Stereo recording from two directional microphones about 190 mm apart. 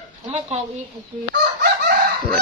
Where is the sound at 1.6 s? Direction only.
55° right (ahead or behind).